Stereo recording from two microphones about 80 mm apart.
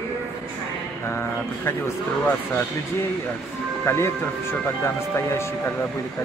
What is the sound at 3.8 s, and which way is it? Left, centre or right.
Speech, left.